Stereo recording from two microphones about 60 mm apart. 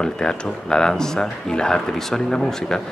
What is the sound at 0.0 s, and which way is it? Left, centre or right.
Speech, centre.